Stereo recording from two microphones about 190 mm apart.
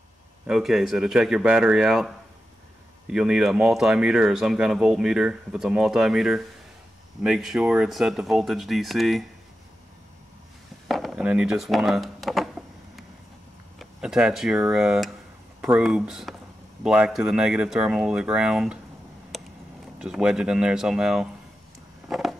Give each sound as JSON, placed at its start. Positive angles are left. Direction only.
{"t": 0.5, "sound": "speech", "side_deg": 0}
{"t": 10.9, "sound": "speech", "side_deg": 0}
{"t": 13.7, "sound": "speech", "side_deg": -5}
{"t": 19.3, "sound": "a sound", "side_deg": 0}
{"t": 20.0, "sound": "speech", "side_deg": -5}
{"t": 22.1, "sound": "a sound", "side_deg": 0}